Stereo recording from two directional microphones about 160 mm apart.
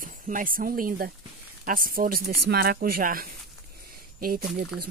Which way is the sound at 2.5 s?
75° right (ahead or behind).